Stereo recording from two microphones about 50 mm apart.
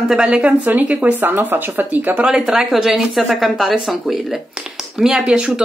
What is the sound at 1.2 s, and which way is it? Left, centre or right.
Speech, right.